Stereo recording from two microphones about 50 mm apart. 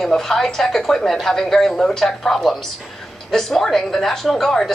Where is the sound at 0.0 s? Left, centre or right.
Centre.